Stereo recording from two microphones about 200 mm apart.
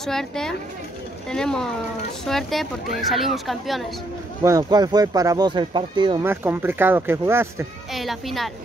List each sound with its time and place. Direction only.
0.0 s speech: centre (ahead or behind)
4.4 s speech: 15° right (ahead or behind)
6.2 s speech: 10° right (ahead or behind)
7.9 s a child's voice: centre (ahead or behind)